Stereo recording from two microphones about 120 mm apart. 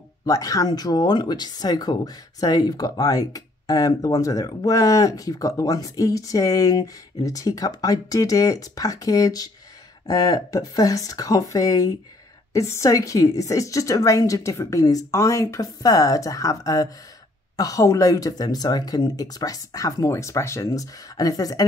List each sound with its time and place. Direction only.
0.2 s a woman's voice: 30° left (ahead or behind)